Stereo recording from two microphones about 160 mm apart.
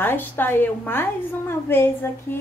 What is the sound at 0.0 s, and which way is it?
A woman's voice, 15° left (ahead or behind).